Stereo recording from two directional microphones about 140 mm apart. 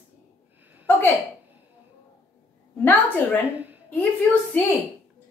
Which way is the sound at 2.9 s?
10° left (ahead or behind).